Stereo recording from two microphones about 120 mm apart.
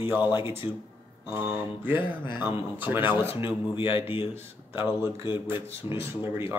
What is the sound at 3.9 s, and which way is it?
Speech, 50° left (ahead or behind).